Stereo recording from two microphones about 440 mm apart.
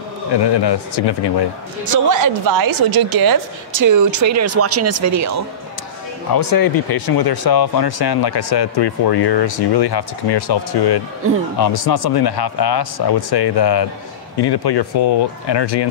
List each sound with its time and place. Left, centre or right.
0.3 s speech: left
1.9 s a woman's voice: right
6.3 s speech: left